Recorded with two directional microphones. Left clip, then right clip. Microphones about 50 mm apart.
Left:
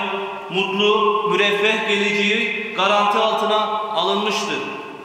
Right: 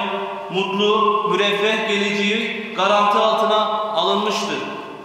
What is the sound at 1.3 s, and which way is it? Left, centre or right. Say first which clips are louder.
Mantra: left 1 dB; centre.